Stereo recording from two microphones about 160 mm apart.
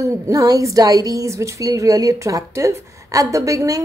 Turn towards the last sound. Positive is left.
turn(degrees=-20)  # may be behind; listen again after turning